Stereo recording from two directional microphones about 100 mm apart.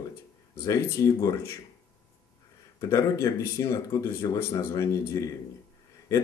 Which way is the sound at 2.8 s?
30° left (ahead or behind).